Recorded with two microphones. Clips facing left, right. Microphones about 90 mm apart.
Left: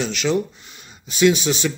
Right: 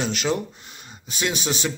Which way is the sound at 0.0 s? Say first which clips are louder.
Left 3 dB; 45° right (ahead or behind).